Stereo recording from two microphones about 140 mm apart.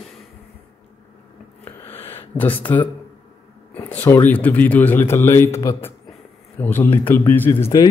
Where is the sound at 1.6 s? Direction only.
15° left (ahead or behind).